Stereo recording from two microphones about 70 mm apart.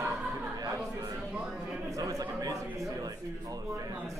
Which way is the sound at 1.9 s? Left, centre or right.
Right.